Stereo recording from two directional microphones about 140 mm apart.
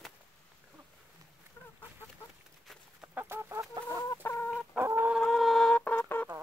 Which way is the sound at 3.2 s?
15° right (ahead or behind).